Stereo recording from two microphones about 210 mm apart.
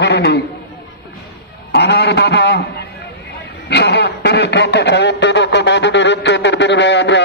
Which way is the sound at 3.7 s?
55° left (ahead or behind).